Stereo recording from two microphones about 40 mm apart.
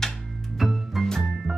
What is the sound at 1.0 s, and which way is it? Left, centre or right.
Music, centre.